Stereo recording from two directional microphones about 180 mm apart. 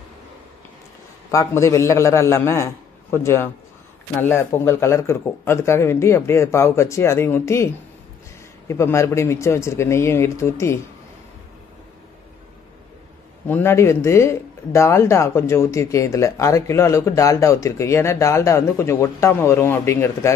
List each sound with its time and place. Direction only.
1.3 s speech: 15° left (ahead or behind)
13.5 s speech: 15° left (ahead or behind)